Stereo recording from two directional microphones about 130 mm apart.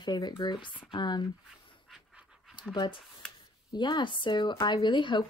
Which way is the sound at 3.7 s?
35° left (ahead or behind).